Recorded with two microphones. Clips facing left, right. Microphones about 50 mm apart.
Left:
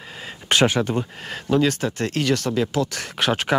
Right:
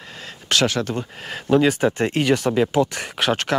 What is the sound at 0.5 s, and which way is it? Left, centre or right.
Speech, left.